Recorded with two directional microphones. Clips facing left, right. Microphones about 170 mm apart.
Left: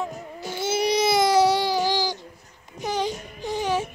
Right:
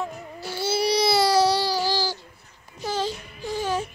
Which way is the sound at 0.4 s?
20° left (ahead or behind).